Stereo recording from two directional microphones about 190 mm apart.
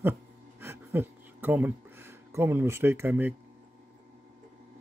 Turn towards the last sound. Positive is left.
turn(degrees=-10)  # may be behind; listen again after turning